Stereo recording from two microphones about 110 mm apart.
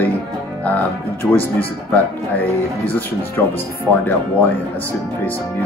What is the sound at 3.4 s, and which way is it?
Speech, 20° left (ahead or behind).